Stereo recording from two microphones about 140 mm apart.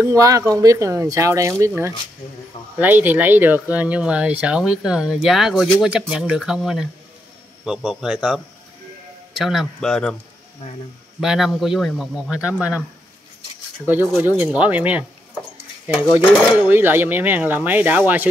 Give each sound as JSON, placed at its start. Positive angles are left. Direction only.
{"t": 0.0, "sound": "speech", "side_deg": -20}
{"t": 2.8, "sound": "a man's voice", "side_deg": -15}
{"t": 11.1, "sound": "a man's voice", "side_deg": -5}
{"t": 13.8, "sound": "speech", "side_deg": -15}
{"t": 16.6, "sound": "speech", "side_deg": -15}